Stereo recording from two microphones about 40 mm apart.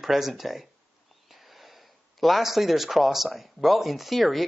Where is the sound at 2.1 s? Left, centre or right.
Centre.